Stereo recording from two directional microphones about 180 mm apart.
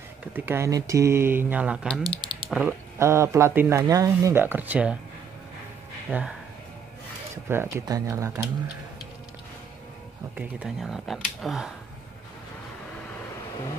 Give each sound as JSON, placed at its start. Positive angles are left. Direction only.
{"t": 0.3, "sound": "speech", "side_deg": -15}
{"t": 2.0, "sound": "typing", "side_deg": -25}
{"t": 2.5, "sound": "speech", "side_deg": -10}
{"t": 6.1, "sound": "speech", "side_deg": -10}
{"t": 7.4, "sound": "speech", "side_deg": -15}
{"t": 10.3, "sound": "speech", "side_deg": -5}